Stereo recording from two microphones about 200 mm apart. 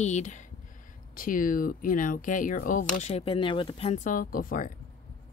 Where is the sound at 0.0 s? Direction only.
35° left (ahead or behind).